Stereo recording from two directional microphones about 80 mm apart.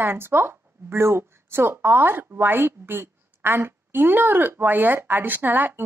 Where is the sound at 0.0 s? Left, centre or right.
Right.